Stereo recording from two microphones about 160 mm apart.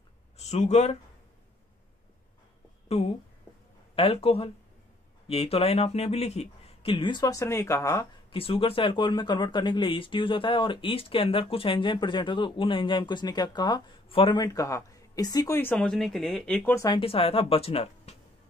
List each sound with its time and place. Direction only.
0.4 s speech: 45° left (ahead or behind)
2.9 s speech: 40° left (ahead or behind); by 8.1 s 20° left (ahead or behind)
8.3 s speech: 35° left (ahead or behind); by 16.7 s 5° left (ahead or behind)
16.7 s speech: 25° left (ahead or behind)
17.0 s speech: 35° left (ahead or behind)